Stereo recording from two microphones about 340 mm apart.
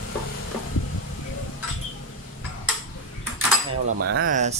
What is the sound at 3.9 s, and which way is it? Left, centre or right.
Speech, right.